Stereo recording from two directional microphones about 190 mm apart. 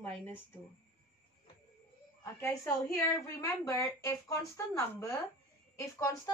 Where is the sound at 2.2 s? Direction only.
15° left (ahead or behind).